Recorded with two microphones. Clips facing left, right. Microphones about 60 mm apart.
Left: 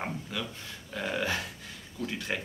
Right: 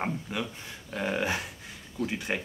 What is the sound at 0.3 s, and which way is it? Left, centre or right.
Speech, right.